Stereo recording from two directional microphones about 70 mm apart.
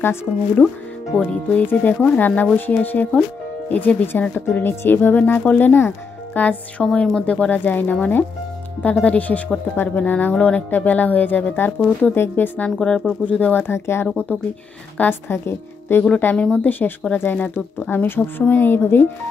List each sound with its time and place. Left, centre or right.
0.0 s a woman's voice: left
1.1 s speech: centre
6.8 s speech: centre
12.7 s speech: centre
13.2 s a woman's voice: left
16.3 s a woman's voice: centre